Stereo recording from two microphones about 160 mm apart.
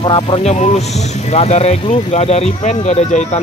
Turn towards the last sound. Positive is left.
turn(degrees=45)  # may be behind; listen again after turning